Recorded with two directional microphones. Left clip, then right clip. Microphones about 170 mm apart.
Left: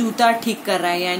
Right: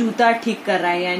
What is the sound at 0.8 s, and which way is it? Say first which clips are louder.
Speech: even; 15° right (ahead or behind).